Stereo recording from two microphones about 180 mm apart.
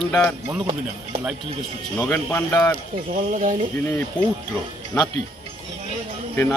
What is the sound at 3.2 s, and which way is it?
Speech, 45° right (ahead or behind).